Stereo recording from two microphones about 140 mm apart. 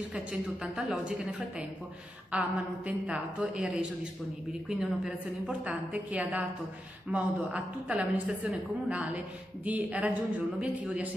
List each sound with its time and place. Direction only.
0.1 s a woman's voice: 5° right (ahead or behind)